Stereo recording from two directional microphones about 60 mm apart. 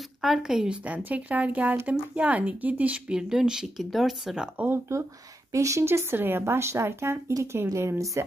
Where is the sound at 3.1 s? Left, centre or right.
Centre.